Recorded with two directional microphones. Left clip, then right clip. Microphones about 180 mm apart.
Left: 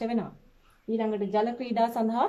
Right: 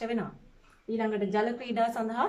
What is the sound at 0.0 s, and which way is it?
A woman's voice, 25° left (ahead or behind).